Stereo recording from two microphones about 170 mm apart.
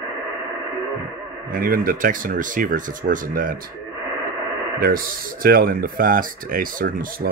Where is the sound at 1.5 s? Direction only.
55° right (ahead or behind).